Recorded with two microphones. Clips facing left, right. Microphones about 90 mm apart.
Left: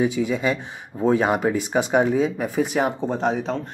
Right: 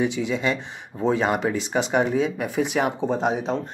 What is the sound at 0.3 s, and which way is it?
Speech, 5° left (ahead or behind).